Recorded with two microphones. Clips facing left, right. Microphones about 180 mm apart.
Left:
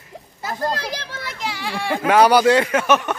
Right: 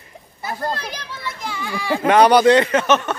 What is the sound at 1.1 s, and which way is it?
Speech, 85° left.